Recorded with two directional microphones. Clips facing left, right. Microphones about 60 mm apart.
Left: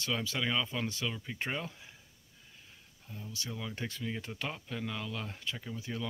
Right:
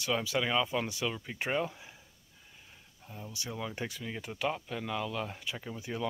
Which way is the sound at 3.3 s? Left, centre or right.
Centre.